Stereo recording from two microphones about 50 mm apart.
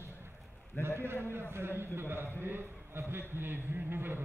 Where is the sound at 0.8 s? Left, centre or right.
Right.